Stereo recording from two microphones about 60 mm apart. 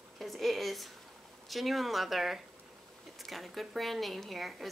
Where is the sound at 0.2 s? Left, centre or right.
Centre.